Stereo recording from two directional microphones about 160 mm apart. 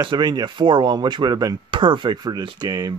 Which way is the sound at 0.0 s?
30° right (ahead or behind).